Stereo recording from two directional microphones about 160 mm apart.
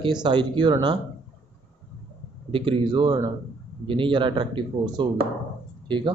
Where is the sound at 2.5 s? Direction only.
30° right (ahead or behind).